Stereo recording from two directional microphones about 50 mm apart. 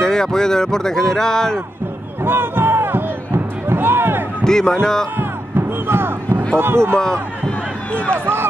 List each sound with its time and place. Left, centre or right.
0.0 s speech: centre
2.2 s music: right
4.5 s speech: centre
5.9 s speech: right
7.0 s speech: centre
8.1 s speech: right